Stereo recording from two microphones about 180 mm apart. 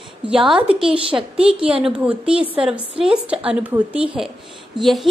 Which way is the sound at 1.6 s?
30° right (ahead or behind).